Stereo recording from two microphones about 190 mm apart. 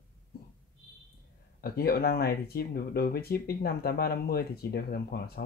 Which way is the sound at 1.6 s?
50° left (ahead or behind).